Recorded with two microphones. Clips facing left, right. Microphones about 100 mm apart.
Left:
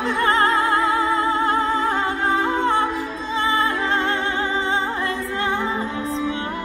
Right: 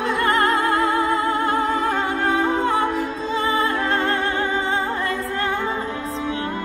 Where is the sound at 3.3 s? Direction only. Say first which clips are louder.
Left 1 dB; 25° left (ahead or behind).